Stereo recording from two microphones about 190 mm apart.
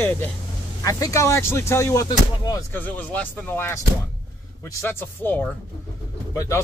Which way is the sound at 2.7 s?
10° left (ahead or behind).